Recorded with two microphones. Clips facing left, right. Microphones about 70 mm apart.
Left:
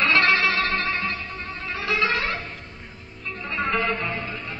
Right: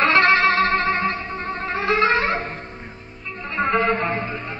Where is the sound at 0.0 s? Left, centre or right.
Right.